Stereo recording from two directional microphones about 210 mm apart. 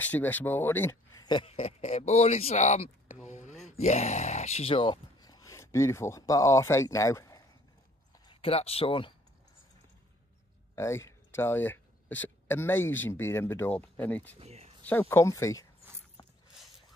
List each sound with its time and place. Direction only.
0.0 s speech: 10° left (ahead or behind); by 3.2 s 35° left (ahead or behind)
3.3 s a sound: 35° left (ahead or behind)
3.6 s speech: 35° left (ahead or behind)
10.8 s speech: 15° left (ahead or behind)
14.4 s speech: 30° right (ahead or behind)
14.8 s speech: 10° left (ahead or behind)
16.2 s a sound: 20° left (ahead or behind)